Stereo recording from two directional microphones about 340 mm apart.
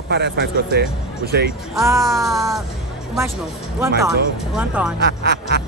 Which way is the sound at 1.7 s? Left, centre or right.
Centre.